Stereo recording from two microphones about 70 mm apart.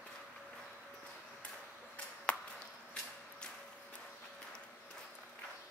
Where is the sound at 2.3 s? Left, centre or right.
Centre.